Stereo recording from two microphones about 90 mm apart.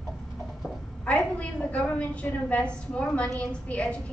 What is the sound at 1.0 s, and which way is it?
A woman's voice, 15° left (ahead or behind).